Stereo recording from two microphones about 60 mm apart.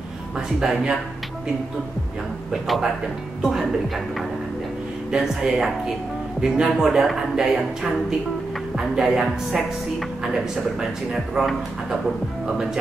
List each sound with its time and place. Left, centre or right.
0.6 s speech: centre
3.4 s a woman's voice: centre
5.1 s a woman's voice: centre